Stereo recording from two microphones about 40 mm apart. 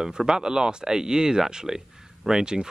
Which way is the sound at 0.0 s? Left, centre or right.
Centre.